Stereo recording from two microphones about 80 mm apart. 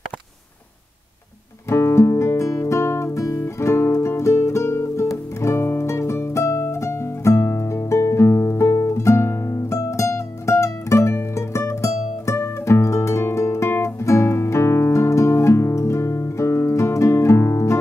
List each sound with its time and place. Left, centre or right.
1.7 s music: left